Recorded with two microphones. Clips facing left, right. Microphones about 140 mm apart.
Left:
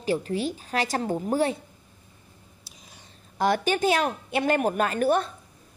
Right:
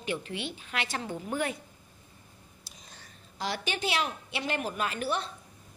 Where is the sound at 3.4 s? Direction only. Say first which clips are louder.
Left 10 dB; 50° left (ahead or behind).